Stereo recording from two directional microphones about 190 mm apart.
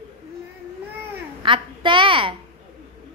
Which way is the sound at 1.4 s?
25° right (ahead or behind).